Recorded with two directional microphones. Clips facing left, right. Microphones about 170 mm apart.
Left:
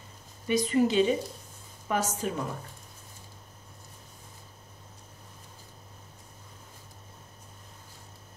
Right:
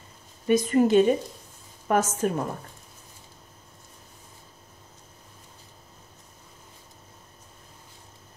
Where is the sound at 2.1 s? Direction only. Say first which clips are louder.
Right 6 dB; 50° right (ahead or behind).